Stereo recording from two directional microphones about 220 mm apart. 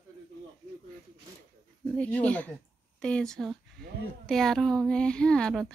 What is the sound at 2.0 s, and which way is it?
Speech, 5° left (ahead or behind).